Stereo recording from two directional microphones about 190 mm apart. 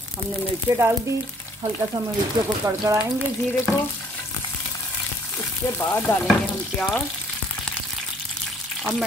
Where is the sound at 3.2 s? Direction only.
10° left (ahead or behind).